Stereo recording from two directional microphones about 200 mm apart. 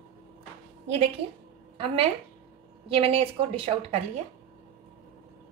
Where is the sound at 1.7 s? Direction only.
30° right (ahead or behind).